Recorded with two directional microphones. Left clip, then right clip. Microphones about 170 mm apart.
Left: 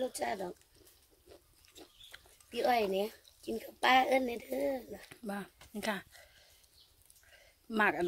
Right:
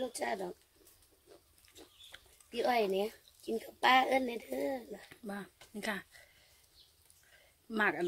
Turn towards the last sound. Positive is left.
turn(degrees=30)  # may be behind; listen again after turning